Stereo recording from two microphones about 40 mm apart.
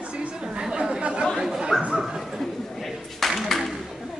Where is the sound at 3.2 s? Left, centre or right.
Centre.